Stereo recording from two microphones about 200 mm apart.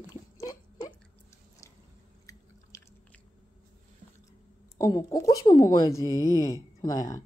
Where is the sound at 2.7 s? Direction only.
15° left (ahead or behind).